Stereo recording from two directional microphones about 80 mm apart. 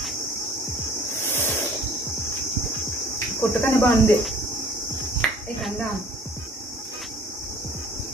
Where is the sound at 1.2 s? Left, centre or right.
Left.